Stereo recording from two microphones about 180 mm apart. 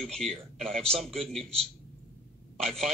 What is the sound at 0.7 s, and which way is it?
Speech, 35° right (ahead or behind).